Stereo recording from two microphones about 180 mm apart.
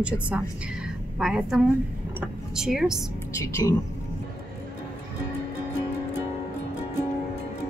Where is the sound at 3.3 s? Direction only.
15° left (ahead or behind).